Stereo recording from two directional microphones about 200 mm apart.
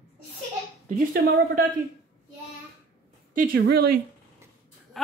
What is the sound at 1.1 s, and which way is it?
Speech, 50° right (ahead or behind).